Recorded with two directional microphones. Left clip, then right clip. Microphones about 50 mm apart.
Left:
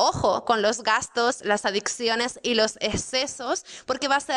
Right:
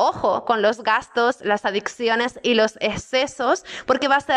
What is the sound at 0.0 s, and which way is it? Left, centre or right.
A woman's voice, left.